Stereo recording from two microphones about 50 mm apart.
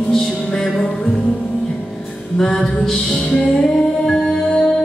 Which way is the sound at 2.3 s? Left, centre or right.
Centre.